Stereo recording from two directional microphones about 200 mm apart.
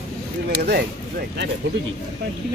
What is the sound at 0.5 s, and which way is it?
Speech, 55° right (ahead or behind).